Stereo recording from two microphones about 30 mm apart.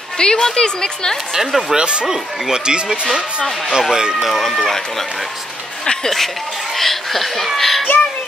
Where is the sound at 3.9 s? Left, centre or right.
Right.